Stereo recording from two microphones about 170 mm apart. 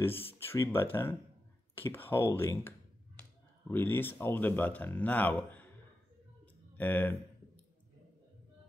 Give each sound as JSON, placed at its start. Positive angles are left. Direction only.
{"t": 0.3, "sound": "speech", "side_deg": 15}
{"t": 3.7, "sound": "speech", "side_deg": 10}
{"t": 6.8, "sound": "speech", "side_deg": 10}